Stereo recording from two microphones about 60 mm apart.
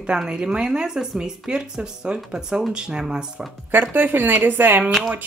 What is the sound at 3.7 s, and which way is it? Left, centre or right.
A woman's voice, right.